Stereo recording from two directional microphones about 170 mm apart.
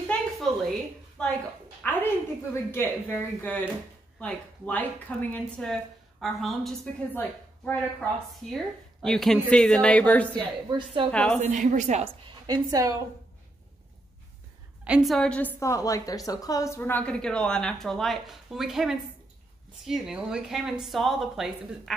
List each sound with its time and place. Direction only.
0.5 s a sound: centre (ahead or behind)
1.2 s a woman's voice: 5° left (ahead or behind)
11.4 s a woman's voice: 45° right (ahead or behind)
12.3 s a woman's voice: 25° right (ahead or behind)
14.9 s speech: centre (ahead or behind)
15.6 s a woman's voice: 20° left (ahead or behind); by 21.9 s centre (ahead or behind)